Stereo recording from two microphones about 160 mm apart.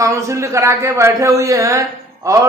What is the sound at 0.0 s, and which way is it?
A man's voice, 20° right (ahead or behind).